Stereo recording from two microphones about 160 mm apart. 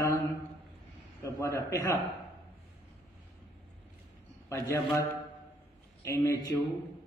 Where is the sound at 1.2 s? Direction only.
20° left (ahead or behind).